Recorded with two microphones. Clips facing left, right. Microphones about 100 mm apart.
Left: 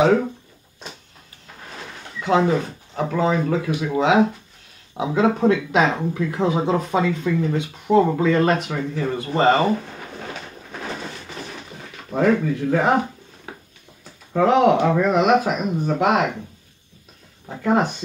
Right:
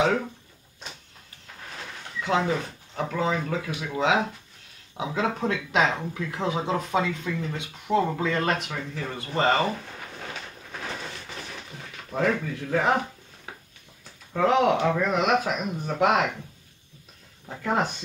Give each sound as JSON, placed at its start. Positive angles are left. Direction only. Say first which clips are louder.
{"t": 0.0, "sound": "speech", "louder": "left 7 dB", "side_deg": 20}
{"t": 2.1, "sound": "speech", "louder": "left 6 dB", "side_deg": 20}
{"t": 11.0, "sound": "a sound", "louder": "left 4 dB", "side_deg": 15}
{"t": 11.8, "sound": "speech", "louder": "left 6 dB", "side_deg": 20}
{"t": 14.5, "sound": "speech", "louder": "left 6 dB", "side_deg": 20}
{"t": 16.0, "sound": "speech", "louder": "left 2 dB", "side_deg": 10}
{"t": 17.5, "sound": "speech", "louder": "left 6 dB", "side_deg": 15}